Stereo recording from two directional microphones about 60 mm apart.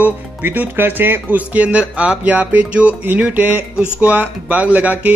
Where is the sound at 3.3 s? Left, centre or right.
Right.